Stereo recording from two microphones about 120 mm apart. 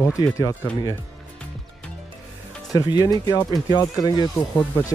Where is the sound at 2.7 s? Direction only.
30° left (ahead or behind).